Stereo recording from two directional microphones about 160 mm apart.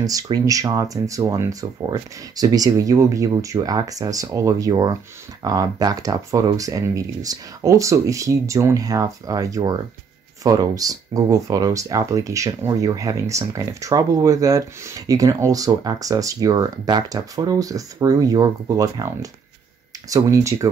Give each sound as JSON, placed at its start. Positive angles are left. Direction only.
{"t": 0.0, "sound": "speech", "side_deg": -20}